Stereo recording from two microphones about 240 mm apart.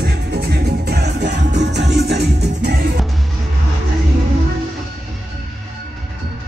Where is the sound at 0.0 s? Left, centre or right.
Right.